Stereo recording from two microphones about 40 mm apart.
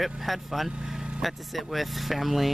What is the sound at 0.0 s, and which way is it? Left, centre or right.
Speech, centre.